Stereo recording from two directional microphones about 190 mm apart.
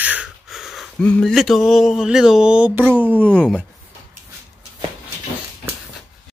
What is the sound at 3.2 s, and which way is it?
Speech, 5° left (ahead or behind).